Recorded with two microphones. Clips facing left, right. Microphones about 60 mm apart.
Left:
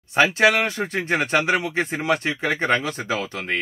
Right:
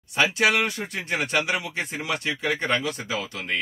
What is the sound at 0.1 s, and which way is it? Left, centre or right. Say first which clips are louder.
Speech: left 4 dB; left.